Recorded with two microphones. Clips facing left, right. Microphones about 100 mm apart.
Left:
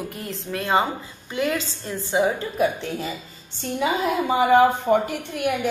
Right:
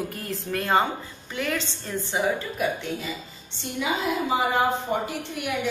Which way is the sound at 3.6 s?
45° left (ahead or behind).